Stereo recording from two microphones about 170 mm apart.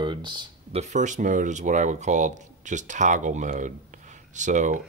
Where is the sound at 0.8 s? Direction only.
45° right (ahead or behind).